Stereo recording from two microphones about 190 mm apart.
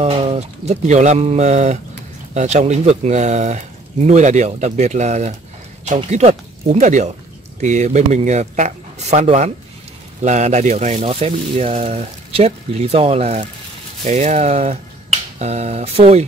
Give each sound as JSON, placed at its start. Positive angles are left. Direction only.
{"t": 0.0, "sound": "speech", "side_deg": -35}